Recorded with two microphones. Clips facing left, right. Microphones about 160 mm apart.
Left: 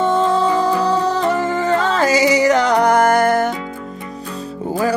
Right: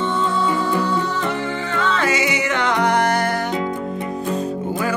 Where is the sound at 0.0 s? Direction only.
40° left (ahead or behind).